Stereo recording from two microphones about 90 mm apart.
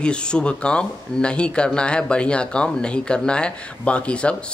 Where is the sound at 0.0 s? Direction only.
10° left (ahead or behind).